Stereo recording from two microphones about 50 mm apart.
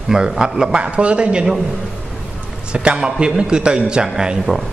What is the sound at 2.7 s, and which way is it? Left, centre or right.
A man's voice, centre.